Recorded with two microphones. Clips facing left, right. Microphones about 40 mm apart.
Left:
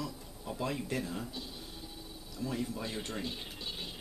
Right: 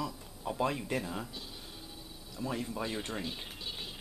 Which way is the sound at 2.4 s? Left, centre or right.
Right.